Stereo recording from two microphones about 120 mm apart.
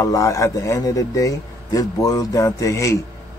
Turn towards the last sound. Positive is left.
turn(degrees=25)  # may be behind; listen again after turning